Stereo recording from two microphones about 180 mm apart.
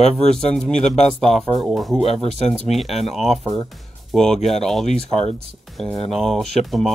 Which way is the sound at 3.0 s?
Centre (ahead or behind).